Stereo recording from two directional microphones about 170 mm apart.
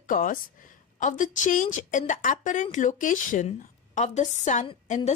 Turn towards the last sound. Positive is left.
turn(degrees=45)  # may be behind; listen again after turning